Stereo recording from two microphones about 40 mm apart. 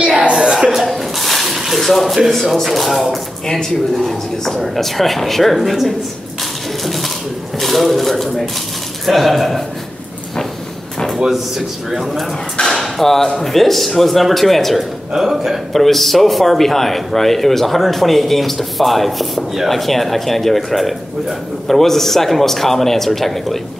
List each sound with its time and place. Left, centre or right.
0.3 s a sound: centre
0.7 s a sound: centre
2.4 s speech: centre
3.4 s speech: centre
6.8 s a sound: centre
7.5 s speech: centre
11.3 s speech: centre
12.8 s speech: centre
15.1 s a man's voice: centre
15.7 s speech: centre